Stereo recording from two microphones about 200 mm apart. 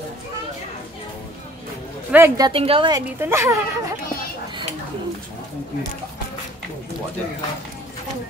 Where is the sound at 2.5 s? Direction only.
25° right (ahead or behind).